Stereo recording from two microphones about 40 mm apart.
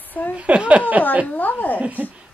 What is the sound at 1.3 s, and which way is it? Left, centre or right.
Speech, left.